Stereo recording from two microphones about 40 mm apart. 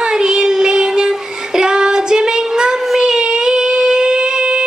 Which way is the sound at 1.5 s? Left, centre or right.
Centre.